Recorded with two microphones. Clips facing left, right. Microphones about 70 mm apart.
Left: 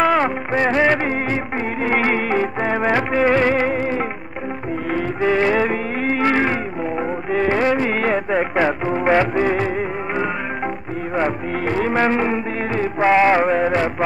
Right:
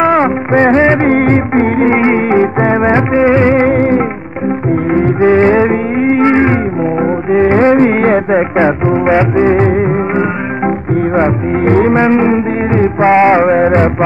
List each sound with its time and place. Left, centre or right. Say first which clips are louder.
0.0 s music of bollywood: right 7 dB; right
1.0 s music: right 12 dB; right
1.9 s music: right 9 dB; right
3.6 s music: right 10 dB; right
5.2 s music: right 8 dB; right
8.5 s music: right 8 dB; right
9.7 s music: right 11 dB; right
11.9 s music: right 9 dB; right
13.5 s music: right 8 dB; right